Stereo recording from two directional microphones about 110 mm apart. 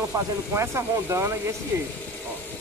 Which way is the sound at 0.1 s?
35° right (ahead or behind).